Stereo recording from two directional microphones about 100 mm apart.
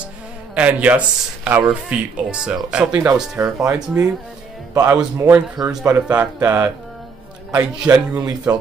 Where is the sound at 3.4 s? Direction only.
30° right (ahead or behind).